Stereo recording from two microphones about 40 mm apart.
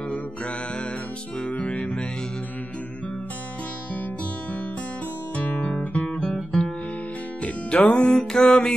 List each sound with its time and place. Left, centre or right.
1.4 s music: left
5.3 s guitar: left
7.4 s music: left
8.1 s mantra: left